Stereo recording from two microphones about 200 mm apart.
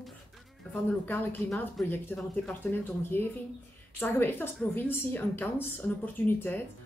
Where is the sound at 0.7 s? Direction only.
10° left (ahead or behind).